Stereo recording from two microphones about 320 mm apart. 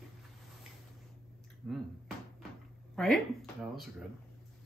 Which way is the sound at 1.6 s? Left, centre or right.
Centre.